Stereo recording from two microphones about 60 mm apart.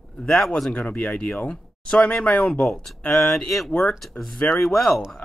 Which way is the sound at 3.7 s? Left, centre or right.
Left.